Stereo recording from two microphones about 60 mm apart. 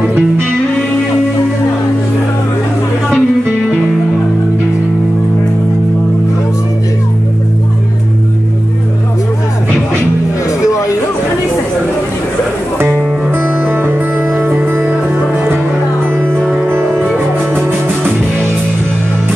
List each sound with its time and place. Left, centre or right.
3.1 s music: centre
13.3 s music: right
16.6 s music: right